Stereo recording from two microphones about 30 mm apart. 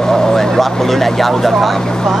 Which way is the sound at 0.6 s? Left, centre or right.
Centre.